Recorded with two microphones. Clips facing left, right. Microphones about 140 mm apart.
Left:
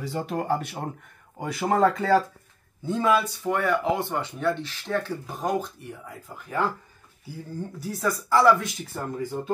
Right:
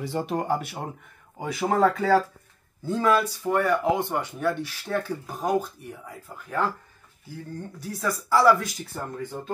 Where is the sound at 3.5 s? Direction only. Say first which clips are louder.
Right 2 dB; 10° right (ahead or behind).